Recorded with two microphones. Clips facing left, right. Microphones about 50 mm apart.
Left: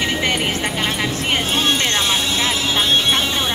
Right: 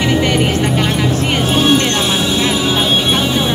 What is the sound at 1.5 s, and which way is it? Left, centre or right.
Music, centre.